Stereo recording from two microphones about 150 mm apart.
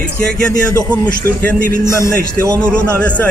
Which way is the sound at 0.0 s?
5° left (ahead or behind).